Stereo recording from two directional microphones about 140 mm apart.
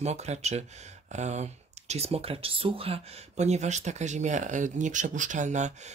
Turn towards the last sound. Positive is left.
turn(degrees=-60)  # may be behind; listen again after turning